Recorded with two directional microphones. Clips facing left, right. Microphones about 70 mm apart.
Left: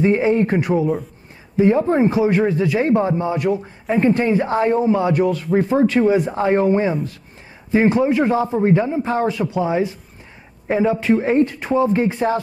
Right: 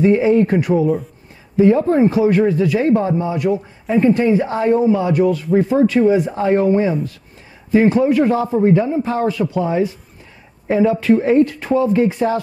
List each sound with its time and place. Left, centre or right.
0.0 s speech: left
3.2 s speech: left